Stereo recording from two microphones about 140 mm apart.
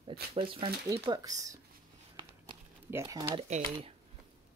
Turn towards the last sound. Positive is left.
turn(degrees=-55)  # may be behind; listen again after turning